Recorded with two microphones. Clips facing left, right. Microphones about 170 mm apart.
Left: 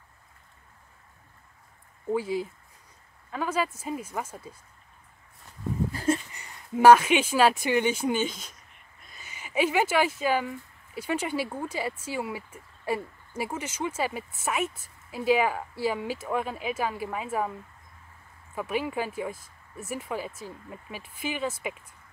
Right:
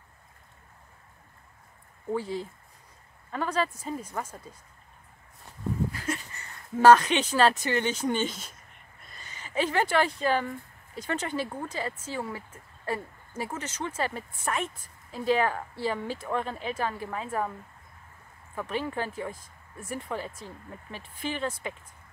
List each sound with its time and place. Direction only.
2.1 s speech: 10° left (ahead or behind)
6.3 s speech: 15° left (ahead or behind)
18.5 s speech: 10° left (ahead or behind)